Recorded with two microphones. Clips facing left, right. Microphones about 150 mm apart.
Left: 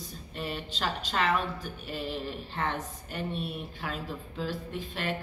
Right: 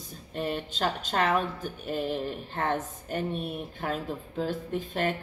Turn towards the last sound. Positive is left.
turn(degrees=-45)  # may be behind; listen again after turning